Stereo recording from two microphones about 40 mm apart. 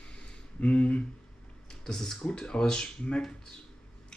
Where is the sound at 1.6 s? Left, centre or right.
Centre.